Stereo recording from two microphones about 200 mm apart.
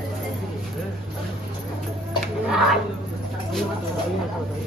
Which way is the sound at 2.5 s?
Centre (ahead or behind).